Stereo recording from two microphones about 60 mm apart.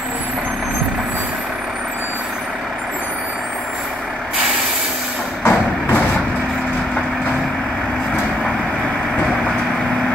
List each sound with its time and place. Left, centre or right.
5.4 s vehicle: left